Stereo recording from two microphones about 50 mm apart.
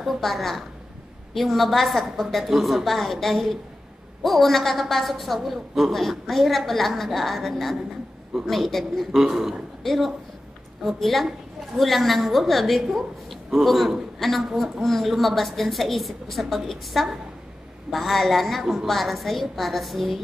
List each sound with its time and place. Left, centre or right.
0.0 s a woman's voice: centre